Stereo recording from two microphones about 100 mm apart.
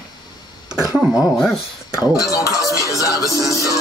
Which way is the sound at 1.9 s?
35° left (ahead or behind).